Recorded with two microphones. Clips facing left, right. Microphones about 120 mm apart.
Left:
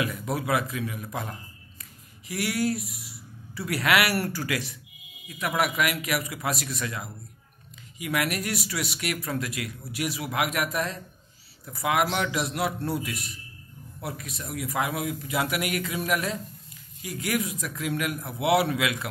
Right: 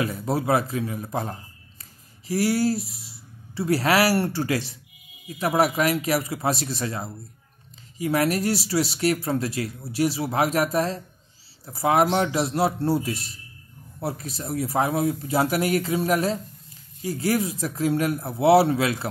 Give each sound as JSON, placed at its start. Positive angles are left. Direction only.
{"t": 0.0, "sound": "speech", "side_deg": -30}